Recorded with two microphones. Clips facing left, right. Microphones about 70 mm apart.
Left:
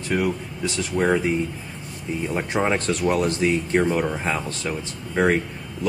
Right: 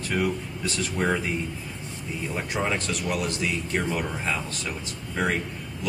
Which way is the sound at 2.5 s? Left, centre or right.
Left.